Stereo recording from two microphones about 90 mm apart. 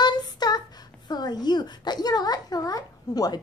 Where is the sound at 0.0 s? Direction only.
50° left (ahead or behind).